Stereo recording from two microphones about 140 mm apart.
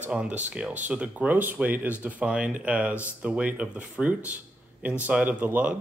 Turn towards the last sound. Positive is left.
turn(degrees=-10)  # may be behind; listen again after turning